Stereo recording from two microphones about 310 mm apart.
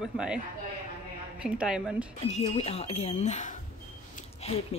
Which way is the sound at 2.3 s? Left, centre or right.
Centre.